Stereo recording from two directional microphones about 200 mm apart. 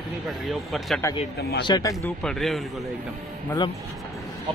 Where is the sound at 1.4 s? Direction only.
55° left (ahead or behind).